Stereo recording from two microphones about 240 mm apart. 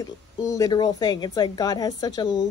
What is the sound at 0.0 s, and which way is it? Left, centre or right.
A woman's voice, centre.